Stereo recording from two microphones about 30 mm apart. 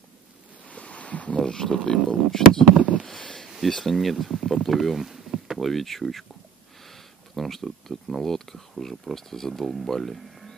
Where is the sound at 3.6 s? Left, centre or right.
Centre.